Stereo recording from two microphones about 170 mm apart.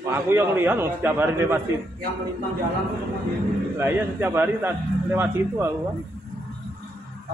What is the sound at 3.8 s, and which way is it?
A man's voice, 15° right (ahead or behind).